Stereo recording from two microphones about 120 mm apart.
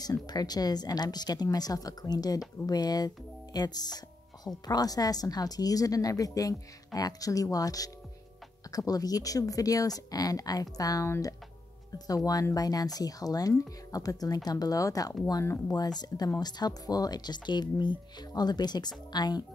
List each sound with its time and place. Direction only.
0.0 s a woman's voice: 35° left (ahead or behind)